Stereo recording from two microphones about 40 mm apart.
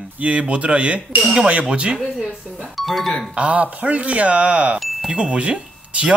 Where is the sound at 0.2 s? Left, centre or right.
Right.